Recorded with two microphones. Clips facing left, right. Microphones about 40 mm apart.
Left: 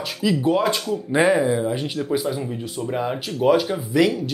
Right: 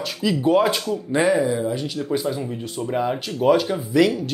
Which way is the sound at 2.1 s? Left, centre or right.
Centre.